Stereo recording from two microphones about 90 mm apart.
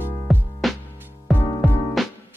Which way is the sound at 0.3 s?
Centre (ahead or behind).